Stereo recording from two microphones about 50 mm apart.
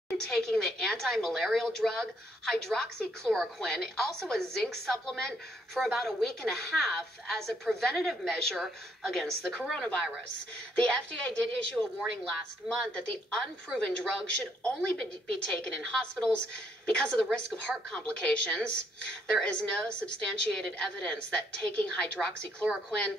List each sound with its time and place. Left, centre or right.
0.2 s a woman's voice: centre
9.6 s a woman's voice: centre